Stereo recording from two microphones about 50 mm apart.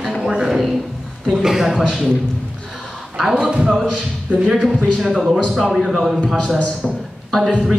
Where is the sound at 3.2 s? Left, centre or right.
Centre.